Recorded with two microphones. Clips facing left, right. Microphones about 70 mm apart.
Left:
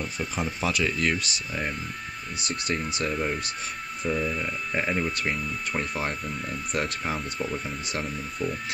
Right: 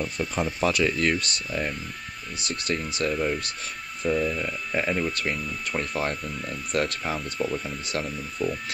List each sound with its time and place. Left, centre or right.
0.0 s speech: centre
2.6 s speech: centre
3.1 s speech: centre
4.7 s speech: centre
7.4 s speech: centre